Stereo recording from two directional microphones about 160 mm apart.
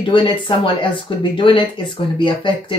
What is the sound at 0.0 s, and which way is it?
Speech, 30° left (ahead or behind).